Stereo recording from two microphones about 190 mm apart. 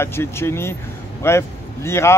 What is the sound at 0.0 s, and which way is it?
Speech, 15° left (ahead or behind).